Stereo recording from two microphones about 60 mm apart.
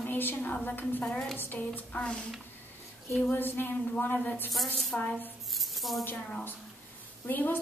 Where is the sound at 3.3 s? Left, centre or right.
Left.